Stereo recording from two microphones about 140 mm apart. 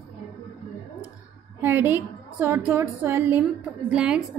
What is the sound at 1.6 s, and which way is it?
A woman's voice, 15° right (ahead or behind).